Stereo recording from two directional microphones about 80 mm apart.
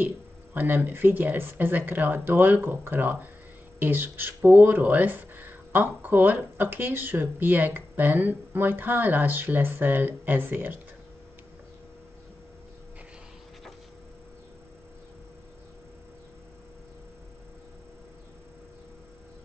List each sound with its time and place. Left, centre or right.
0.6 s speech: right